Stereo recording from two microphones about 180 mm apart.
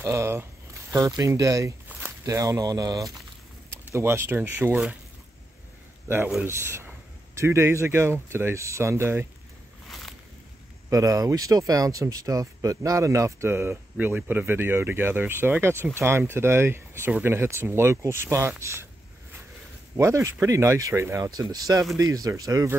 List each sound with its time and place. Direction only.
0.0 s speech: 15° right (ahead or behind)
6.0 s speech: 15° right (ahead or behind)
9.8 s a sound: centre (ahead or behind)
10.9 s speech: 20° right (ahead or behind)
20.0 s speech: 15° right (ahead or behind)